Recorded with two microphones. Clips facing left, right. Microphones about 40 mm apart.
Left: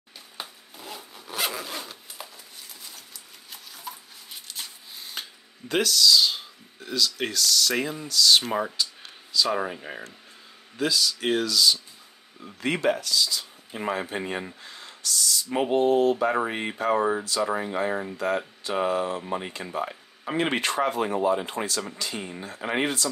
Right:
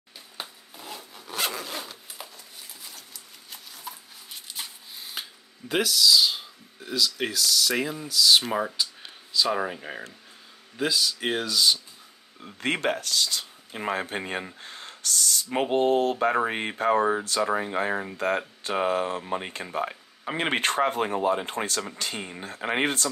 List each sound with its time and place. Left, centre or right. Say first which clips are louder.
0.4 s zipper: even; centre
2.8 s a sound: even; centre
9.5 s speech: even; centre; by 11.8 s right
12.5 s speech: left 2 dB; right
18.1 s speech: even; right
20.3 s speech: left 1 dB; right
20.6 s speech: right 1 dB; right